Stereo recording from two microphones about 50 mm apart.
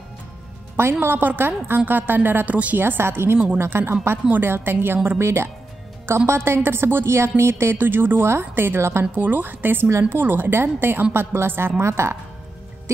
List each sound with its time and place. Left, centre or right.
1.0 s a woman's voice: right
2.5 s a woman's voice: right
2.8 s a woman's voice: right
5.2 s a woman's voice: right
7.7 s a woman's voice: right
9.1 s a woman's voice: right